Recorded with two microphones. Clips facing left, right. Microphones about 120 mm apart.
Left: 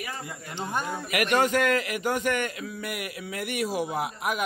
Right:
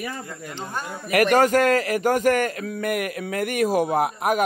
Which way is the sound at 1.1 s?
40° right (ahead or behind).